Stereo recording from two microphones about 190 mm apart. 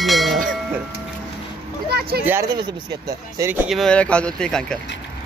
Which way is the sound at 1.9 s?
55° right (ahead or behind).